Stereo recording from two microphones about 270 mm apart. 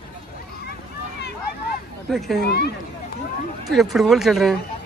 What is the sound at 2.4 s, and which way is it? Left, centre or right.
Speech, left.